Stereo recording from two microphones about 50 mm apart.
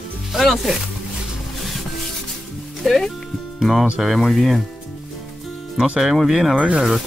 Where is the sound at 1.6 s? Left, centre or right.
Centre.